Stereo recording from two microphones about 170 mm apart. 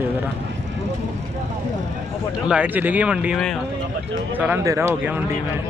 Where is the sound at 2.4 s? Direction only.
5° right (ahead or behind).